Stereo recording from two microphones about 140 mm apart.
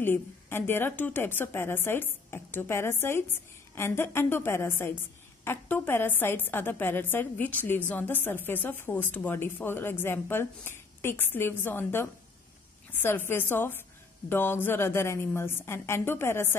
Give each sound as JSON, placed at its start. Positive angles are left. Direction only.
{"t": 0.0, "sound": "a woman's voice", "side_deg": 15}